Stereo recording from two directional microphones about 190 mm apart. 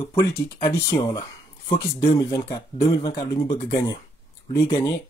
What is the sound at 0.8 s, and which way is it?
Speech, 20° left (ahead or behind).